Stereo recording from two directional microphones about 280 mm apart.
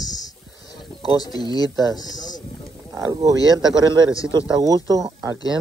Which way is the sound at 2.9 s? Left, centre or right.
Centre.